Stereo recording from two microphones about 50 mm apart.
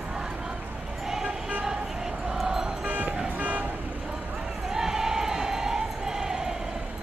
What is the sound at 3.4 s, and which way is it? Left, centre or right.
Vehicle, right.